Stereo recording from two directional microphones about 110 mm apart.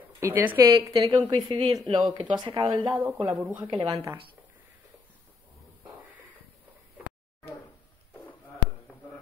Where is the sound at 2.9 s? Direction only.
15° right (ahead or behind).